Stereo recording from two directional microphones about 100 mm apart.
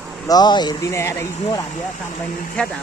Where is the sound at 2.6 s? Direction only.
10° left (ahead or behind).